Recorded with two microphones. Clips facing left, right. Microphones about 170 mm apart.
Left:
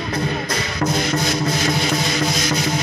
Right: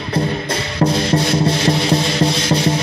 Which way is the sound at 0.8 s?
30° right (ahead or behind).